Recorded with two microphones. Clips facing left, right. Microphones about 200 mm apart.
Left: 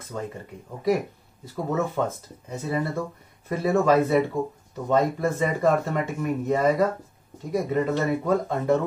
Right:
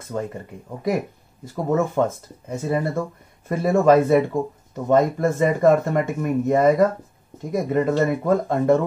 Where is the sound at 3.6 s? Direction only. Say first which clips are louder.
Right 4 dB; 50° right (ahead or behind).